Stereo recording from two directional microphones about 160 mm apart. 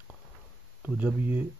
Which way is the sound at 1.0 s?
10° right (ahead or behind).